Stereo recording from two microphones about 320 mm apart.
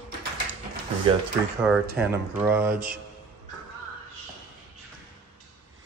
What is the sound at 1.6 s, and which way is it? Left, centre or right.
Speech, centre.